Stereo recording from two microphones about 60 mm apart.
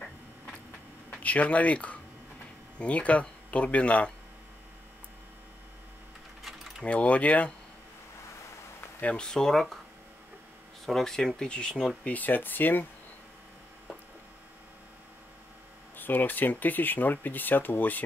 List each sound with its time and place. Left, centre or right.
1.1 s speech: left
6.8 s speech: left
9.0 s speech: centre
10.9 s speech: centre
12.0 s speech: left
16.0 s speech: left